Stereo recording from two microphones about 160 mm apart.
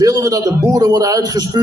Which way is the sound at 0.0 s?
20° right (ahead or behind).